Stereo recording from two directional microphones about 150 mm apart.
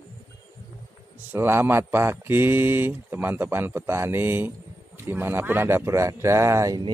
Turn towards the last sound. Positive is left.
turn(degrees=-25)  # may be behind; listen again after turning